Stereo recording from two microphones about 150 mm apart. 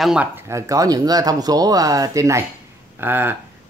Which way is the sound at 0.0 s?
5° right (ahead or behind).